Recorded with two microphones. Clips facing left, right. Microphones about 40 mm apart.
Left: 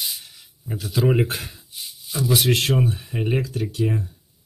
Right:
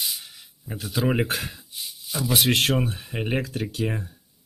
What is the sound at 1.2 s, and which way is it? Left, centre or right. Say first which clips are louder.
Speech: left 1 dB; right.